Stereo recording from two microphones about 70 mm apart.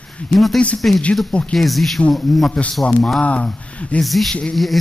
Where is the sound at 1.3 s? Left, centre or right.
Centre.